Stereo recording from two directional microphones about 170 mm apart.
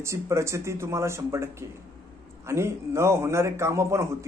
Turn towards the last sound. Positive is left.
turn(degrees=-15)  # may be behind; listen again after turning